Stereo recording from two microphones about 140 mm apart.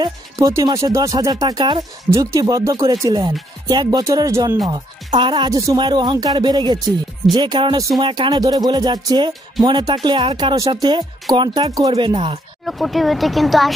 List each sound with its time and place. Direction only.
0.0 s speech: 20° right (ahead or behind)
12.6 s speech: centre (ahead or behind)